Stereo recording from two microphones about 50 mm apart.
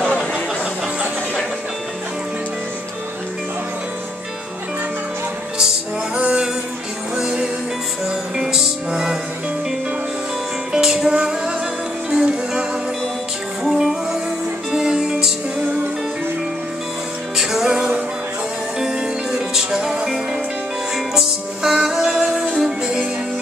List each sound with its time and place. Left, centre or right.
6.1 s music: centre
10.7 s music: centre
13.7 s music: centre
17.4 s music: centre